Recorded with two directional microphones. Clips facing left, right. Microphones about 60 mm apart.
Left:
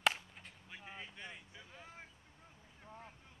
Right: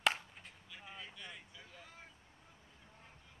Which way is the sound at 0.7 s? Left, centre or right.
Left.